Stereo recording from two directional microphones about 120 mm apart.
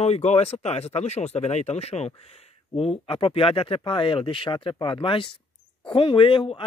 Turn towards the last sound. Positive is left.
turn(degrees=50)  # may be behind; listen again after turning